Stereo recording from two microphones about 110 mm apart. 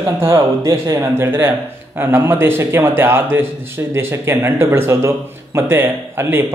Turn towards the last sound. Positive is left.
turn(degrees=-20)  # may be behind; listen again after turning